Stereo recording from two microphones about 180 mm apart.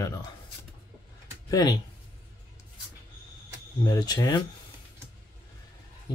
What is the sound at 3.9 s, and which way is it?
Speech, 20° left (ahead or behind).